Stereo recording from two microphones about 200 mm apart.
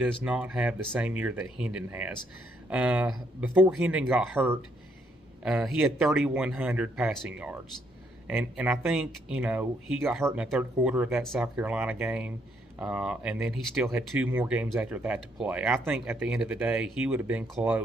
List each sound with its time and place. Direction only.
0.0 s speech: 5° right (ahead or behind)